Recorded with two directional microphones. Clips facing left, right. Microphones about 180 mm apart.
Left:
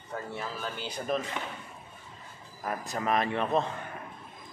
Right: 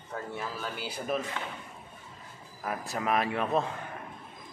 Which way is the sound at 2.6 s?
5° right (ahead or behind).